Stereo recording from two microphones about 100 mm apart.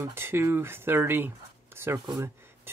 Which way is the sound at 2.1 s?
25° right (ahead or behind).